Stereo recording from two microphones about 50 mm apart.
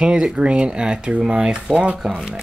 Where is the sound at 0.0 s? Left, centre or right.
Centre.